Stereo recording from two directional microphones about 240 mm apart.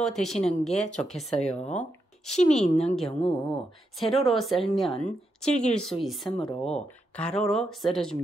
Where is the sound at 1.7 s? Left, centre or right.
Centre.